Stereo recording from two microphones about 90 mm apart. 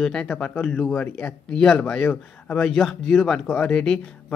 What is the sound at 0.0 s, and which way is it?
Speech, 10° left (ahead or behind).